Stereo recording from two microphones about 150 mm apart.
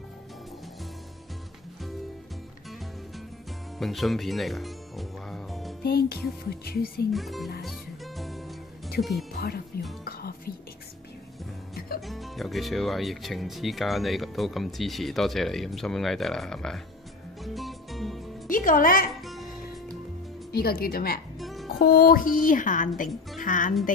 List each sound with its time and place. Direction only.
3.7 s music: centre (ahead or behind)
5.9 s speech: 90° left
7.1 s speech: centre (ahead or behind)
7.6 s music: centre (ahead or behind)
9.7 s speech: 90° left
12.1 s speech: centre (ahead or behind)
17.4 s music: centre (ahead or behind)
18.5 s a woman's voice: 65° left (ahead or behind)
20.5 s speech: 85° left
21.4 s music: centre (ahead or behind)
21.7 s a woman's voice: 90° left; by 23.7 s 60° left (ahead or behind)